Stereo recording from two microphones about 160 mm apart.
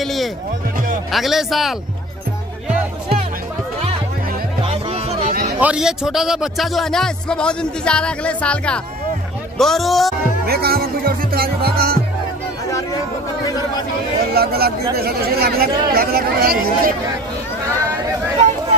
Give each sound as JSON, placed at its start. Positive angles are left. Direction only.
{"t": 0.0, "sound": "music", "side_deg": 0}
{"t": 1.1, "sound": "speech", "side_deg": 0}
{"t": 4.6, "sound": "music", "side_deg": -40}
{"t": 5.3, "sound": "music", "side_deg": -70}
{"t": 5.6, "sound": "speech", "side_deg": -5}
{"t": 10.4, "sound": "speech", "side_deg": -75}
{"t": 14.2, "sound": "speech", "side_deg": -75}